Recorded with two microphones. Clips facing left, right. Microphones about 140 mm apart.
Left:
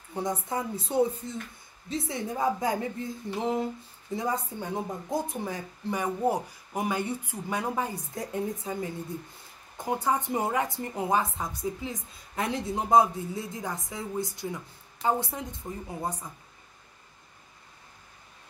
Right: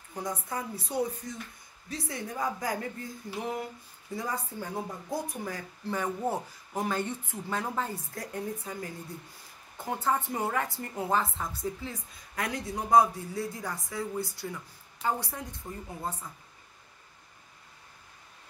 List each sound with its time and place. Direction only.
0.1 s a woman's voice: 25° left (ahead or behind)